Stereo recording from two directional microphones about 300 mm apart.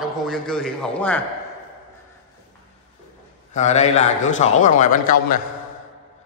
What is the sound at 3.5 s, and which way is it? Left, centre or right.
A man's voice, left.